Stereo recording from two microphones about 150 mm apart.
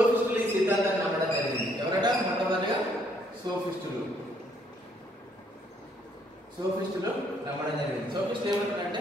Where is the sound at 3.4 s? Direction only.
30° right (ahead or behind).